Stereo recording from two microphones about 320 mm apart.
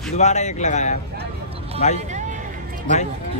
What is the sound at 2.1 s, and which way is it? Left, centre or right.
Hubbub, right.